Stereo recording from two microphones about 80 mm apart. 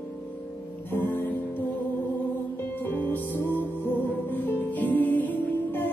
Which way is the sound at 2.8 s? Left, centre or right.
Left.